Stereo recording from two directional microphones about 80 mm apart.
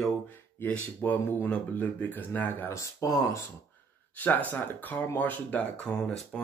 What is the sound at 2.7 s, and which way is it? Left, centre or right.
Speech, left.